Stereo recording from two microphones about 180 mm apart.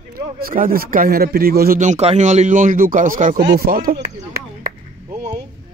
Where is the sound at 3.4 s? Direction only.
60° right (ahead or behind).